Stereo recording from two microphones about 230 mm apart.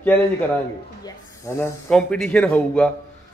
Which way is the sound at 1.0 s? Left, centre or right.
Centre.